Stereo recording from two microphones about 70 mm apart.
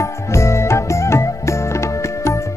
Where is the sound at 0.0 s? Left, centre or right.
Left.